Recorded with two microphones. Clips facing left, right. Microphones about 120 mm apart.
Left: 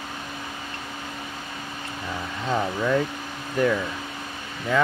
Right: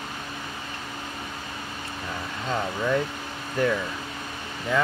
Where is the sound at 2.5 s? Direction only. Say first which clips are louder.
Left 2 dB; 5° left (ahead or behind).